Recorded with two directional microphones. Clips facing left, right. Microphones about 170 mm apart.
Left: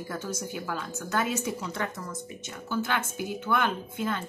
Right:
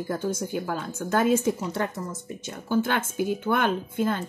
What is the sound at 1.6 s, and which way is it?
Speech, 40° right (ahead or behind).